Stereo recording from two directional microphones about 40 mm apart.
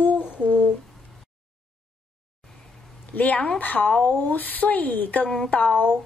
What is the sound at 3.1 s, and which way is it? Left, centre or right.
Speech, left.